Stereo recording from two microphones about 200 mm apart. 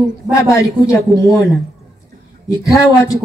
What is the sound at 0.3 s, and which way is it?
Speech, 15° left (ahead or behind).